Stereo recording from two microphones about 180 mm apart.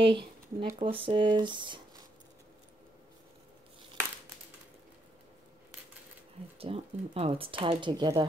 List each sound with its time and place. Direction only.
0.0 s speech: 30° right (ahead or behind)
6.6 s speech: 35° right (ahead or behind)